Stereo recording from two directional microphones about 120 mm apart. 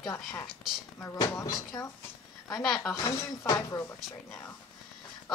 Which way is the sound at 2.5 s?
Centre (ahead or behind).